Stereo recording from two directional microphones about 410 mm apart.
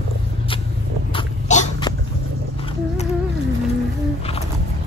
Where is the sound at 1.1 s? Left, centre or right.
Centre.